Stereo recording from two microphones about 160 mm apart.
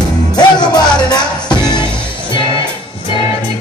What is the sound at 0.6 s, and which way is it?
Music, 25° left (ahead or behind).